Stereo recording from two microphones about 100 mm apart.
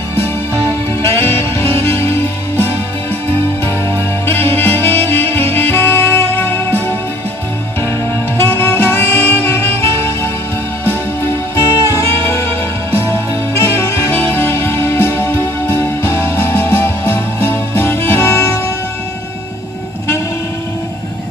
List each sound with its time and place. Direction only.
1.0 s music: 25° left (ahead or behind)
4.3 s music: 20° left (ahead or behind)
5.5 s saxophone: 20° left (ahead or behind)
8.5 s music: 20° left (ahead or behind)
11.5 s music: 30° left (ahead or behind)
13.6 s music: 25° left (ahead or behind)